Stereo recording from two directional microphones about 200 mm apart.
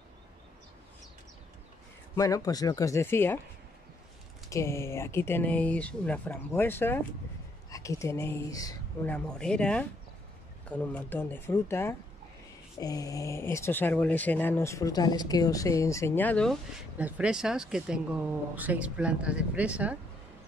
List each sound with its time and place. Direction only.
2.1 s speech: 15° left (ahead or behind)
4.5 s speech: 15° left (ahead or behind)
9.1 s speech: 5° left (ahead or behind)
17.0 s speech: 5° right (ahead or behind)